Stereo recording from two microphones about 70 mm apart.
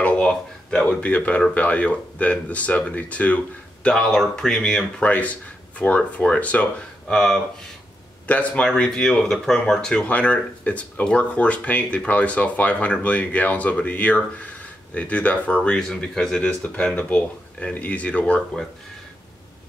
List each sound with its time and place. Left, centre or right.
0.0 s speech: centre
3.8 s speech: centre
5.8 s speech: left